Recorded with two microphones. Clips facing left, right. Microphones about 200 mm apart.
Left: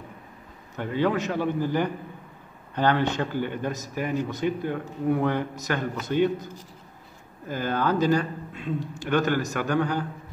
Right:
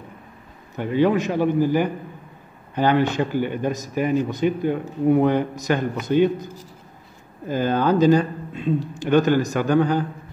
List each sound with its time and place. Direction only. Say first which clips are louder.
0.7 s speech: right 6 dB; 15° right (ahead or behind)
7.4 s a man's voice: right 6 dB; 20° right (ahead or behind)